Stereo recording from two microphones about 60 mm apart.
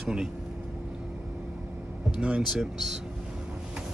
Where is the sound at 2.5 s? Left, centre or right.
Centre.